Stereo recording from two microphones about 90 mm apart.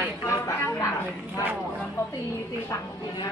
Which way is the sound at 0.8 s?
35° left (ahead or behind).